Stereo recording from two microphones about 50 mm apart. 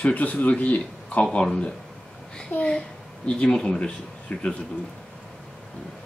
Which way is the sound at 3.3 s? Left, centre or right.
Centre.